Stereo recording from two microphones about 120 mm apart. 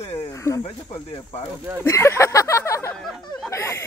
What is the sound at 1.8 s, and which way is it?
Speech, 25° left (ahead or behind).